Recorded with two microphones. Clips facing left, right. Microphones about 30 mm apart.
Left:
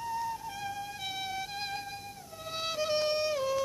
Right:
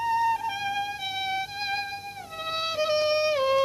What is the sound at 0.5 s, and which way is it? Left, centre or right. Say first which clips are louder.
Music: right 9 dB; right.